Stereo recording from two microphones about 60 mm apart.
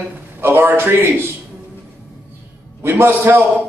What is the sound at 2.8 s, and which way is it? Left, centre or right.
Speech, right.